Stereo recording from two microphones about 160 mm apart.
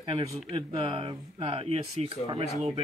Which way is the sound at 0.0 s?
35° right (ahead or behind).